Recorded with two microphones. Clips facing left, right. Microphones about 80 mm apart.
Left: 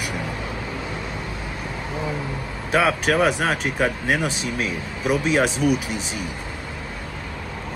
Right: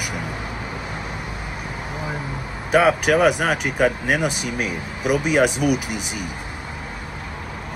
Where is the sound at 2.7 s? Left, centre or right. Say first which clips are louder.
Right 3 dB; centre.